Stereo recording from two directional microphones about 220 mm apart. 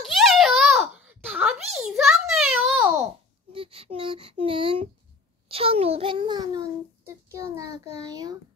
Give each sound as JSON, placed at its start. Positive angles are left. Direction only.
{"t": 0.0, "sound": "a sound", "side_deg": 0}
{"t": 3.5, "sound": "child singing", "side_deg": -25}
{"t": 5.5, "sound": "a child's voice", "side_deg": -25}